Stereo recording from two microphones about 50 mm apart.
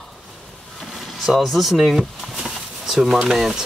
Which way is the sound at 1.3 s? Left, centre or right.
Centre.